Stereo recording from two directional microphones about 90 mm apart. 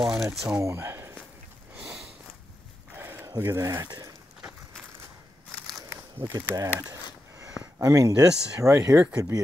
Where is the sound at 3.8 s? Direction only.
50° right (ahead or behind).